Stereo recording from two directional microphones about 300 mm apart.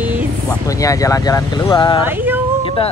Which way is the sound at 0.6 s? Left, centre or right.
Centre.